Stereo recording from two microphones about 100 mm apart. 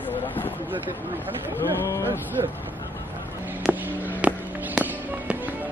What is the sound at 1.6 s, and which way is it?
Speech, 30° left (ahead or behind).